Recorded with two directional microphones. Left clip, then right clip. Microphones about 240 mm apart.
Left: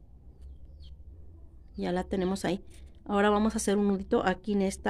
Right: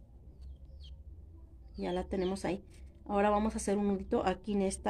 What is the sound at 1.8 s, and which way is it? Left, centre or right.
Speech, left.